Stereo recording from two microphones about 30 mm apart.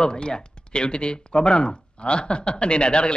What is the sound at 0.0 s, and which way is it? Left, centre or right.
Speech, left.